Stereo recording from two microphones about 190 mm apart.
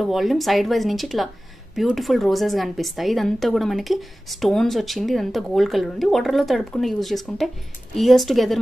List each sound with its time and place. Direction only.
0.0 s speech: centre (ahead or behind)